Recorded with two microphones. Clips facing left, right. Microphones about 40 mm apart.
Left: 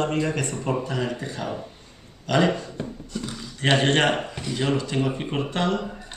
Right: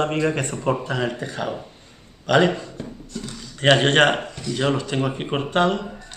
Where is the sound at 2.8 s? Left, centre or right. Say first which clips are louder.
Left 1 dB; centre.